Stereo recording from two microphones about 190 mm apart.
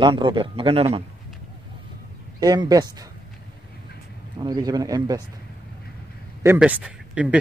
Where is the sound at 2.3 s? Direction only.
20° right (ahead or behind).